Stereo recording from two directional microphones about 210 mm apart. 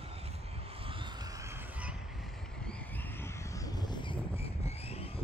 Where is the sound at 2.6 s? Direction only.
10° left (ahead or behind).